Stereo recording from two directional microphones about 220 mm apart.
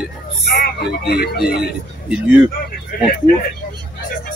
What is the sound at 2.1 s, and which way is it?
Speech, 5° right (ahead or behind).